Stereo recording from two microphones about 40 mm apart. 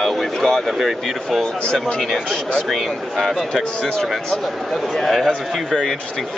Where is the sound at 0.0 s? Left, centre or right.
Centre.